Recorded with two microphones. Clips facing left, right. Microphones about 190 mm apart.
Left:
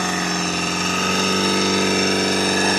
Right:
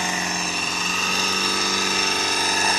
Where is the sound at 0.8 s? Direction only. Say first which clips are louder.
Left 7 dB; 90° left.